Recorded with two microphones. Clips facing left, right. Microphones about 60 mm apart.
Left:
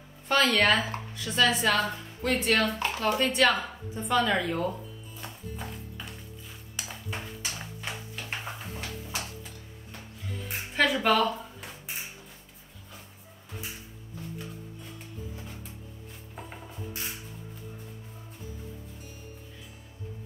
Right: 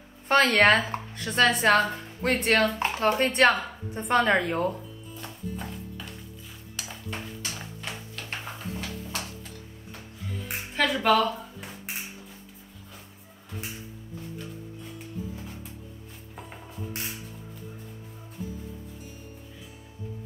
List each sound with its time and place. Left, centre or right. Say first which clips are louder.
0.3 s a woman's voice: right 4 dB; right
2.8 s a woman's voice: right 3 dB; right
5.2 s music: right 3 dB; centre
10.7 s a sound: right 1 dB; centre
16.3 s music: right 1 dB; centre